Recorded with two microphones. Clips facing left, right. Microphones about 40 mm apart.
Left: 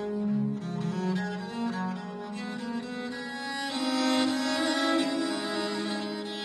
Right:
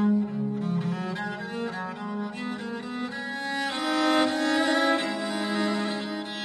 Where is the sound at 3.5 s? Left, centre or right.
Right.